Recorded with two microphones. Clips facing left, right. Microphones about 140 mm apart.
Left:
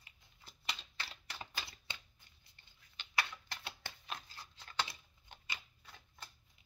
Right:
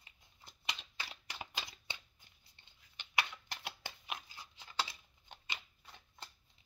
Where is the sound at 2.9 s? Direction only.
15° right (ahead or behind).